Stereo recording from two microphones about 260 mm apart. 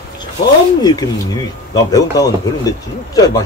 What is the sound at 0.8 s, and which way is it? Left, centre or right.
Speech, centre.